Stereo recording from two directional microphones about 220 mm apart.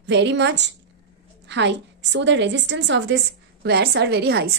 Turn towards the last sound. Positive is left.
turn(degrees=-50)  # may be behind; listen again after turning